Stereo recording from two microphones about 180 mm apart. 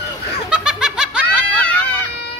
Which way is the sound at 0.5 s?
5° right (ahead or behind).